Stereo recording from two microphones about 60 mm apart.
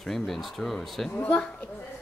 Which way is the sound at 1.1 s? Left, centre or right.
Centre.